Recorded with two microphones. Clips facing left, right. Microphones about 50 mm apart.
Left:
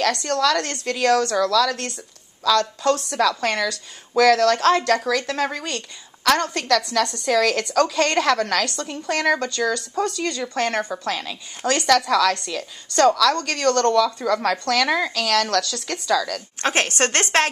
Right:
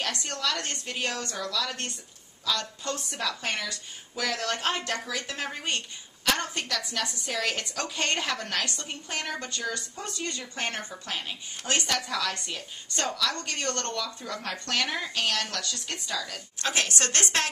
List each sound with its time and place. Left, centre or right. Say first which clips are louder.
0.0 s speech: left 11 dB; left
16.6 s a woman's voice: left 7 dB; left